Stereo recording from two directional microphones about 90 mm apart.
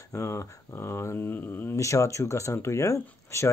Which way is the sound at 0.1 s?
30° left (ahead or behind).